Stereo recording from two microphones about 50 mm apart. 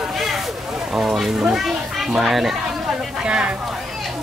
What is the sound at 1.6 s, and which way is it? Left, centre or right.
Children playing, centre.